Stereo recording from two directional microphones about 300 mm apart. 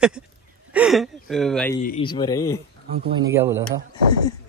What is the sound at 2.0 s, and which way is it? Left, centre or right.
Speech, centre.